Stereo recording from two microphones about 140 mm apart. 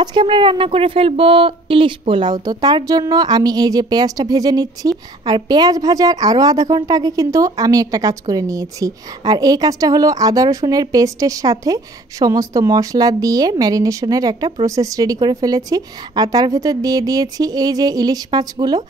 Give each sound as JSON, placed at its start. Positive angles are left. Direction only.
{"t": 0.0, "sound": "a woman's voice", "side_deg": -35}